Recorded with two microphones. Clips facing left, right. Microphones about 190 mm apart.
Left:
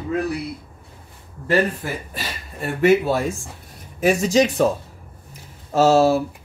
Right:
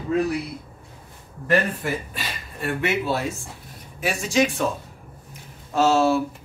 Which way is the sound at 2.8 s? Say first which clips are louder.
Left 9 dB; 45° left (ahead or behind).